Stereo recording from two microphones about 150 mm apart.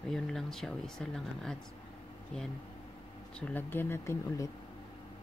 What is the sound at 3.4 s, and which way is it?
Speech, 10° left (ahead or behind).